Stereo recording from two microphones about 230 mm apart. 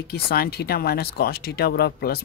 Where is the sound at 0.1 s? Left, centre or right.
Left.